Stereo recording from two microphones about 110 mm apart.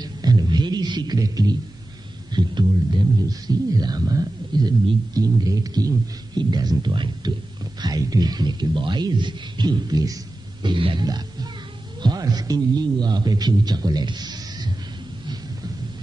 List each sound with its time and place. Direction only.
0.0 s music: 40° right (ahead or behind)
2.3 s speech: 45° right (ahead or behind)